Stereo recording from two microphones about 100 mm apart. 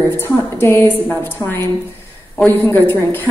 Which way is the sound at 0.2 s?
25° left (ahead or behind).